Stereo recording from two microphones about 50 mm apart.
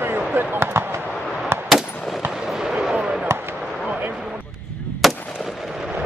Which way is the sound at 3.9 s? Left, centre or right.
Right.